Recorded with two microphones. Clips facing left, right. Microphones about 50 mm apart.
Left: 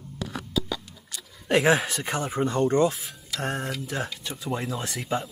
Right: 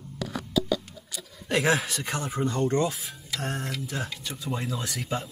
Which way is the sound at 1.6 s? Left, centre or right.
Centre.